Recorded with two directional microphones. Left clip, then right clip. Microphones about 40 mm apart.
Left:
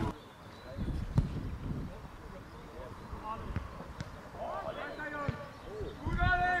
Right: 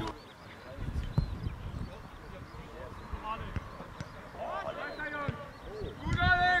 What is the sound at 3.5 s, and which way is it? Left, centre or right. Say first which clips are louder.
Basketball bounce: right 1 dB; centre.